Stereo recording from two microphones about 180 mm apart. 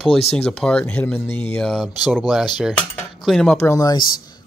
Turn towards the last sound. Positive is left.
turn(degrees=20)  # may be behind; listen again after turning